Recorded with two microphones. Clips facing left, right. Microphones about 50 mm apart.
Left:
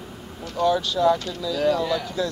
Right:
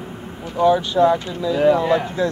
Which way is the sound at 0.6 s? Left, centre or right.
Right.